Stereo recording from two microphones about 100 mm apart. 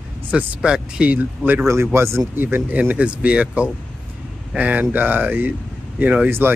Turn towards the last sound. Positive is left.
turn(degrees=-20)  # may be behind; listen again after turning